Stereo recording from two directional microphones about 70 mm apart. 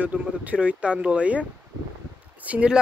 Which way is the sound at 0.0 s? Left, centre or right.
Right.